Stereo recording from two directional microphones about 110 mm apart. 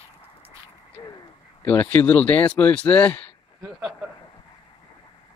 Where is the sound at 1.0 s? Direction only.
30° left (ahead or behind).